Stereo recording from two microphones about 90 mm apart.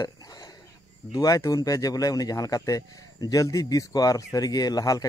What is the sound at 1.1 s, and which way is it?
Speech, 40° left (ahead or behind).